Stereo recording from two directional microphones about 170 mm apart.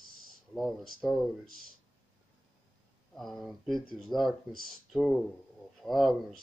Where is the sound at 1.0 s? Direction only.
Centre (ahead or behind).